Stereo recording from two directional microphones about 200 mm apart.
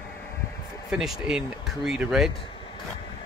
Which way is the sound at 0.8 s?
Centre (ahead or behind).